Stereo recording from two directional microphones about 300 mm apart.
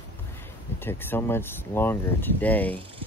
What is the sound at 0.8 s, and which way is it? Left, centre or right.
Speech, centre.